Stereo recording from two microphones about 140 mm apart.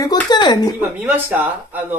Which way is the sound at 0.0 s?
30° left (ahead or behind).